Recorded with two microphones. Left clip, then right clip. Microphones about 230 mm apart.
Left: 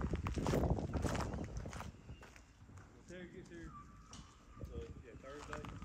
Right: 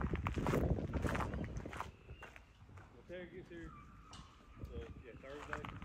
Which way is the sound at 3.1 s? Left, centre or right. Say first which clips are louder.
Right 3 dB; right.